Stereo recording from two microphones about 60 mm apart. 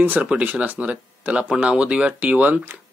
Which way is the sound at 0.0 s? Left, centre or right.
Right.